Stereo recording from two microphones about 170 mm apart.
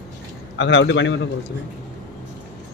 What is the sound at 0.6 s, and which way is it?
Speech, 90° left.